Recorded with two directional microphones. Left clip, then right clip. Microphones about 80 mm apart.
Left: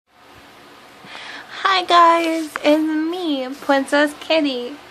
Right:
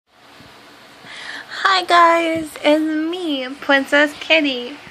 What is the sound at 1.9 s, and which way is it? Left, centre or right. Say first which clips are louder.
Speech: left 1 dB; centre.